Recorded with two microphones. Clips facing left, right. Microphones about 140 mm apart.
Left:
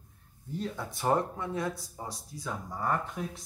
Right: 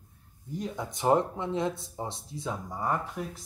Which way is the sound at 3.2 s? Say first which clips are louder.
Right 1 dB; 5° left (ahead or behind).